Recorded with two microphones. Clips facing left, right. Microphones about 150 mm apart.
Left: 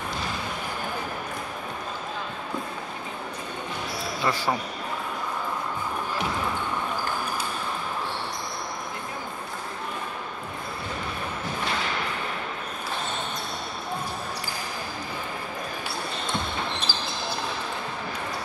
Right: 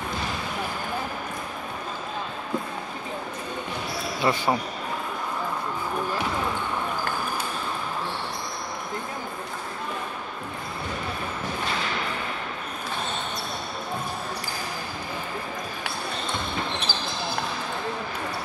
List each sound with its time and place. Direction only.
4.2 s speech: 20° right (ahead or behind)
16.9 s basketball bounce: 60° right (ahead or behind)